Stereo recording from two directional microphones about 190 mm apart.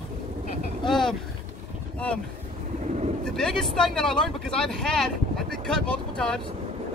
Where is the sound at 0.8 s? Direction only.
Centre (ahead or behind).